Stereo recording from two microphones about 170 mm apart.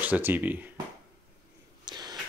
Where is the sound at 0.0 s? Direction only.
10° right (ahead or behind).